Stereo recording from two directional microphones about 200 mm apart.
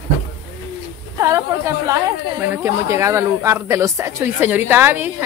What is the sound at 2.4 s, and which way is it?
A woman's voice, 15° right (ahead or behind).